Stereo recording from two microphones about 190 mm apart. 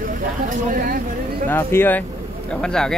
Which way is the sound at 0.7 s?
45° right (ahead or behind).